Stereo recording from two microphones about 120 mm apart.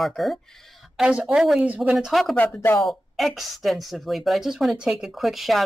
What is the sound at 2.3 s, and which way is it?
Speech, 15° left (ahead or behind).